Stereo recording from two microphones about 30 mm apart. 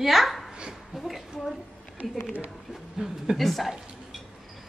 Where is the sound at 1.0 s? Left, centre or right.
Centre.